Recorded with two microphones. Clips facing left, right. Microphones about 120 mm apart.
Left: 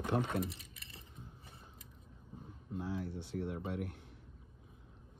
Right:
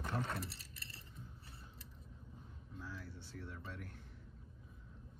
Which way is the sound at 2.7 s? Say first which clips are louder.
Left 10 dB; 70° left (ahead or behind).